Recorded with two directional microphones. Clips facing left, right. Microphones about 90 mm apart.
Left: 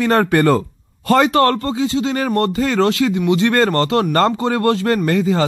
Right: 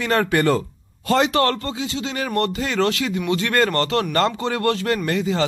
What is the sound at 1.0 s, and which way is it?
Speech, 50° left (ahead or behind).